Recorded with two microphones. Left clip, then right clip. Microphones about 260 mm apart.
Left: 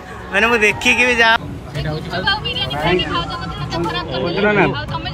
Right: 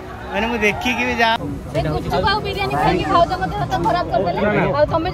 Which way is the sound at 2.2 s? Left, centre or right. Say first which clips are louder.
Left 3 dB; right.